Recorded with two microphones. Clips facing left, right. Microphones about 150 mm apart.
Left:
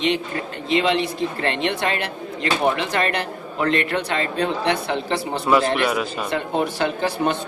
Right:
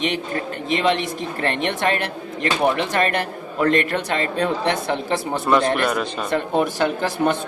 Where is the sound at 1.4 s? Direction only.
50° right (ahead or behind).